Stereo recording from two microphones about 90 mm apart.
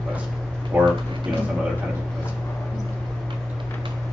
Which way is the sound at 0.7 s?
15° right (ahead or behind).